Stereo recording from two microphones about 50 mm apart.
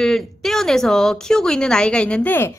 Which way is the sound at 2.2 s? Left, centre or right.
Left.